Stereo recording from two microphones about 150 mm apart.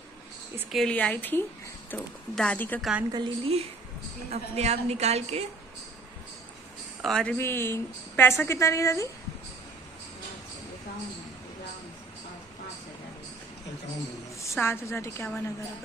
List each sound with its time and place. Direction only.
0.7 s a woman's voice: 5° left (ahead or behind)
2.8 s a woman's voice: 5° right (ahead or behind)
3.1 s a woman's voice: 35° right (ahead or behind)
7.0 s speech: 5° left (ahead or behind)
7.3 s a woman's voice: 15° left (ahead or behind)
14.6 s a woman's voice: 15° left (ahead or behind)